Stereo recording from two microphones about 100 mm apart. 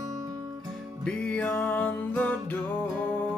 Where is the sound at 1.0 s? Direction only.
10° left (ahead or behind).